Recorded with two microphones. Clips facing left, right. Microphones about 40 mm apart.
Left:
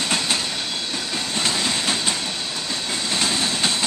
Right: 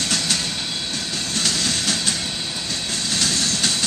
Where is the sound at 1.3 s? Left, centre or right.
Centre.